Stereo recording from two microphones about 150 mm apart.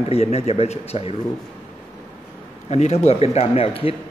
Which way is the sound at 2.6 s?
45° left (ahead or behind).